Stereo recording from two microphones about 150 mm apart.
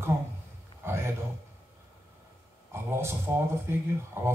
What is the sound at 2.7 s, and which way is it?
Speech, 15° right (ahead or behind).